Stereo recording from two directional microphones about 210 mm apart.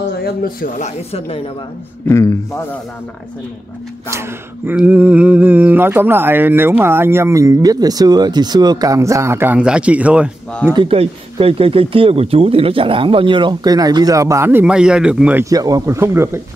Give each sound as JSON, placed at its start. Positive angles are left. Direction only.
{"t": 0.2, "sound": "speech", "side_deg": 45}
{"t": 2.0, "sound": "a man's voice", "side_deg": 15}
{"t": 4.1, "sound": "speech", "side_deg": -10}
{"t": 10.6, "sound": "speech", "side_deg": -20}
{"t": 15.5, "sound": "speech", "side_deg": -15}